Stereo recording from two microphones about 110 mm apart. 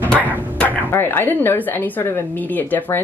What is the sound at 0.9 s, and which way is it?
A woman's voice, 20° left (ahead or behind).